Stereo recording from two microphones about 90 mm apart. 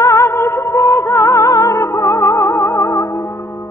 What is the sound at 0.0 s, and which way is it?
Music, 35° left (ahead or behind).